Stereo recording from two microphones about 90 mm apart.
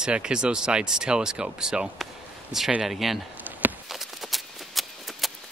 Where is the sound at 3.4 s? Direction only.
20° right (ahead or behind).